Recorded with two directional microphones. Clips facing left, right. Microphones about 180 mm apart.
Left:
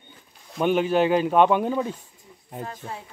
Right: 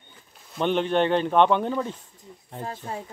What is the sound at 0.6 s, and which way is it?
A man's voice, 5° left (ahead or behind).